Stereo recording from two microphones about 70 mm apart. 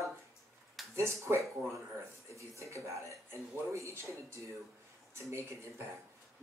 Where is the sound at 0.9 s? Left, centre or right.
Right.